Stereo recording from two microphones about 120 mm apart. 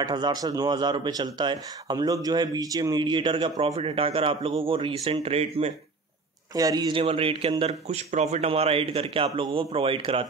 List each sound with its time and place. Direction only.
0.0 s a man's voice: 35° right (ahead or behind); by 5.7 s 60° right (ahead or behind)
6.5 s speech: 30° right (ahead or behind)
7.0 s a man's voice: 50° right (ahead or behind)
8.1 s a man's voice: 70° right (ahead or behind); by 10.2 s 50° right (ahead or behind)